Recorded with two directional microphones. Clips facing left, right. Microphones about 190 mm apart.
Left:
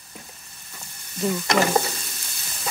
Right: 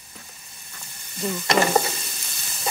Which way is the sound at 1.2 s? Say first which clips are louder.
Even; centre (ahead or behind).